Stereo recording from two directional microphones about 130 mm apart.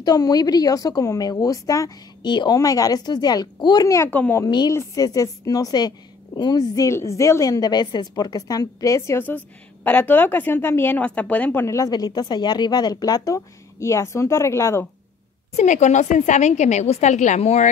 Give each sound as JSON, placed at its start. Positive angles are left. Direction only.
{"t": 0.0, "sound": "a woman's voice", "side_deg": 30}
{"t": 4.5, "sound": "a woman's voice", "side_deg": 35}
{"t": 11.6, "sound": "a woman's voice", "side_deg": 25}
{"t": 15.5, "sound": "a woman's voice", "side_deg": 65}